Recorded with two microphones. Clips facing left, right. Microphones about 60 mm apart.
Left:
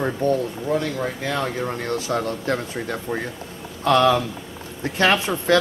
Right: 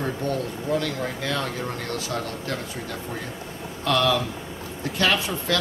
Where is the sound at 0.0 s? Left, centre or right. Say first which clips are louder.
Left 5 dB; left.